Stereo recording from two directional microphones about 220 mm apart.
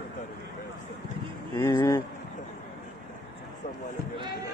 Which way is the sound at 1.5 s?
15° left (ahead or behind).